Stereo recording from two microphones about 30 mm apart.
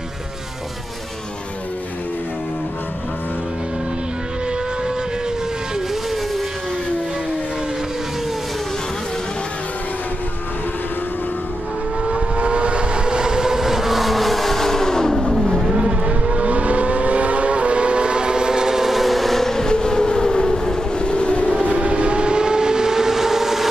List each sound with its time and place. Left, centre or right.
12.1 s vehicle: right; by 15.3 s centre
15.3 s vehicle: centre
15.7 s vehicle: right
16.3 s vehicle: right
18.9 s vehicle: centre
19.7 s civil defense siren: left
21.0 s a sound: left
21.7 s vehicle: right; by 23.7 s centre